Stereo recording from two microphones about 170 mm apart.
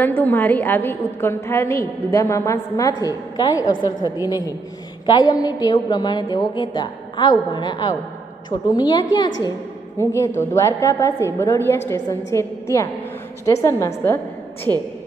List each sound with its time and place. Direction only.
0.0 s a woman's voice: 10° left (ahead or behind)
14.7 s a woman's voice: 25° right (ahead or behind)